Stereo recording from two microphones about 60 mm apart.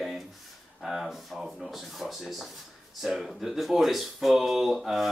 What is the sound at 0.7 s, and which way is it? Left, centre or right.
Speech, centre.